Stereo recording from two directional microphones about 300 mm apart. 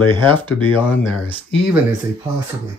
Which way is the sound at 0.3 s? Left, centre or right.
Centre.